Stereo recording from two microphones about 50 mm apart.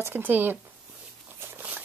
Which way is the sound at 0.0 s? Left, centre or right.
Right.